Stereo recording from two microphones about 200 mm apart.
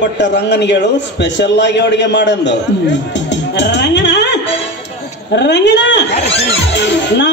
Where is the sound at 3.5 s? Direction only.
60° left (ahead or behind).